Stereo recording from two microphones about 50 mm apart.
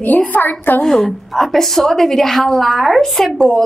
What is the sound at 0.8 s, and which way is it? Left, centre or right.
A woman's voice, centre.